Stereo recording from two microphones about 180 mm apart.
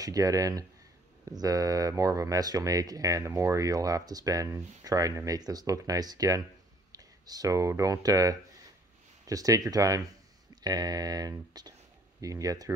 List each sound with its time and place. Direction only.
0.0 s speech: 20° right (ahead or behind)